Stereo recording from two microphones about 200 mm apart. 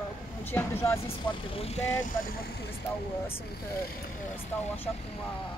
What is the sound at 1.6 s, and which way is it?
Speech, 30° left (ahead or behind).